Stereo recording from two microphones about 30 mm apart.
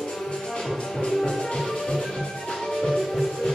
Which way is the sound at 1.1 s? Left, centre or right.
Centre.